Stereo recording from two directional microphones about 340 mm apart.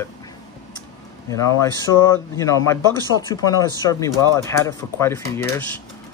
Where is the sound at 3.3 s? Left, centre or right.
Centre.